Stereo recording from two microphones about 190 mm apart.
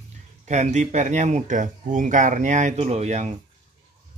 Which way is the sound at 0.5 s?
35° right (ahead or behind).